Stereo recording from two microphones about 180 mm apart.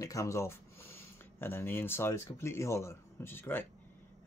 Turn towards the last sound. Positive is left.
turn(degrees=10)  # may be behind; listen again after turning